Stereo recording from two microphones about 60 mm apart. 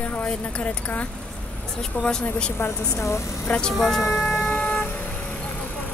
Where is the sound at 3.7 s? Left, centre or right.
Centre.